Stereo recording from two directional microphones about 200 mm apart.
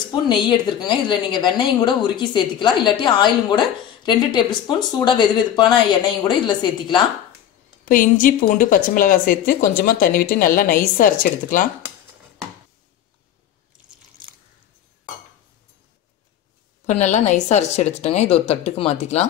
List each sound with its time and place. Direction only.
0.1 s a woman's voice: 20° left (ahead or behind)
7.8 s speech: 45° left (ahead or behind)
16.8 s a woman's voice: 35° left (ahead or behind)